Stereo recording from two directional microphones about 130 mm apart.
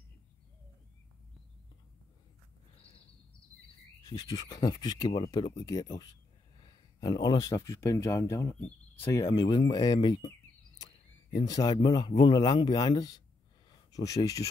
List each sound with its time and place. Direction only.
4.3 s speech: 30° left (ahead or behind)
8.5 s speech: 10° left (ahead or behind)
9.1 s speech: 30° left (ahead or behind)